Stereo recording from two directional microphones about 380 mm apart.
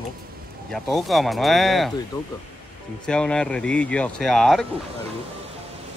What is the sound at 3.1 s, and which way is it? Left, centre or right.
Speech, centre.